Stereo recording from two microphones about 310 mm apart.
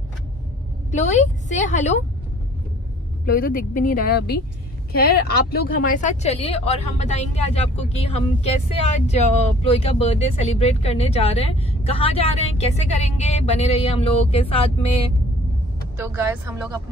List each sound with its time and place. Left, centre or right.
0.9 s speech: left
3.3 s speech: left
16.0 s speech: centre